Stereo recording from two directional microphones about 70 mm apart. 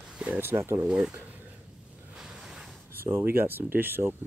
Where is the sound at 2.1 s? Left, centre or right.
Centre.